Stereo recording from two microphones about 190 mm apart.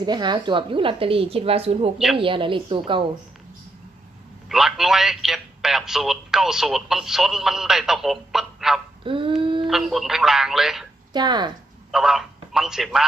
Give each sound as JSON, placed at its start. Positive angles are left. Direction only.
{"t": 0.0, "sound": "a woman's voice", "side_deg": -20}
{"t": 4.5, "sound": "a man's voice", "side_deg": 0}
{"t": 9.0, "sound": "dog", "side_deg": -25}
{"t": 9.4, "sound": "a sound", "side_deg": -25}
{"t": 9.7, "sound": "a man's voice", "side_deg": 0}
{"t": 11.1, "sound": "a woman's voice", "side_deg": -25}
{"t": 11.9, "sound": "a man's voice", "side_deg": 0}